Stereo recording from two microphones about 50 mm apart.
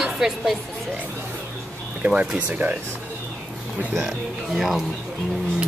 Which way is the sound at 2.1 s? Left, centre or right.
Right.